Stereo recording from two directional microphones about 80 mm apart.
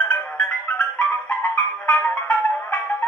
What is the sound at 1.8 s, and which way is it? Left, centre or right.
Music, centre.